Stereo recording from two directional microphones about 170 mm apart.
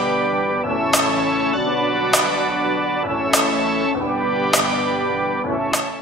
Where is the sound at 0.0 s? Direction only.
Centre (ahead or behind).